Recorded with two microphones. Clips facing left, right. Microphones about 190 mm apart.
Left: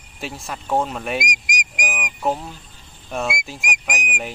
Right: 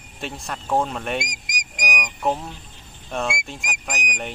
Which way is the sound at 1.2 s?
20° left (ahead or behind).